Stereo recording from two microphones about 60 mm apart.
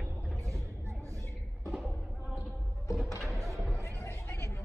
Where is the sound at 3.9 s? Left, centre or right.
Left.